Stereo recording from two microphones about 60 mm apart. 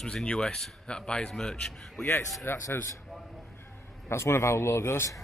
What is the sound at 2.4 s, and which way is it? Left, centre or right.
Speech, left.